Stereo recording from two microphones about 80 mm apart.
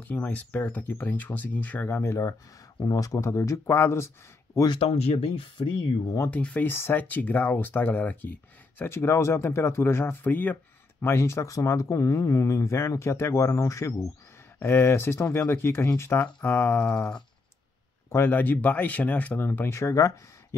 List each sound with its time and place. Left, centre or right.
0.0 s speech: left
2.8 s speech: left
5.6 s speech: left
6.3 s speech: centre
6.7 s speech: left
18.1 s speech: left